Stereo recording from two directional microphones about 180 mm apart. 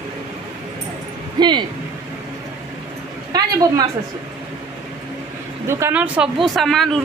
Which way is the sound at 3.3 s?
20° right (ahead or behind).